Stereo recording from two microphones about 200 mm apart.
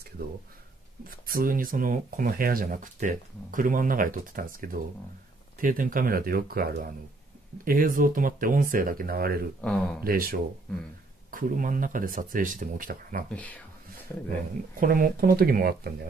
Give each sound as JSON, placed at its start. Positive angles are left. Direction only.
{"t": 1.0, "sound": "speech", "side_deg": -45}
{"t": 9.6, "sound": "speech", "side_deg": 5}
{"t": 10.0, "sound": "speech", "side_deg": -45}
{"t": 13.3, "sound": "speech", "side_deg": 5}
{"t": 14.8, "sound": "speech", "side_deg": -45}